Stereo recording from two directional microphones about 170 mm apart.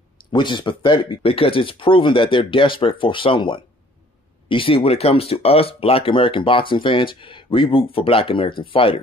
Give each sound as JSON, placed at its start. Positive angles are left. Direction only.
{"t": 0.3, "sound": "speech", "side_deg": 25}